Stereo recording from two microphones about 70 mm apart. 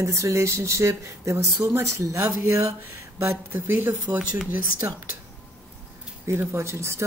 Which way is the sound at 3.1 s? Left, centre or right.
Right.